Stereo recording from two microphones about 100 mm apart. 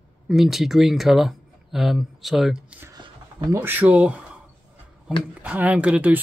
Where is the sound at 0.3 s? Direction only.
Centre (ahead or behind).